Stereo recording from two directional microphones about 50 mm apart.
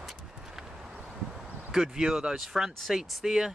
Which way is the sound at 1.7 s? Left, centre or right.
Centre.